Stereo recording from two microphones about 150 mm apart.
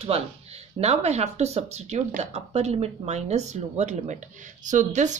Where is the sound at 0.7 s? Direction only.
45° right (ahead or behind).